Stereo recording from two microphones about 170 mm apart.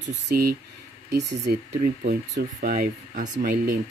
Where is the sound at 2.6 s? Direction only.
50° right (ahead or behind).